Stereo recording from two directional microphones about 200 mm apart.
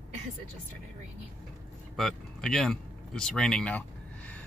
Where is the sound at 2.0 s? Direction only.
Centre (ahead or behind).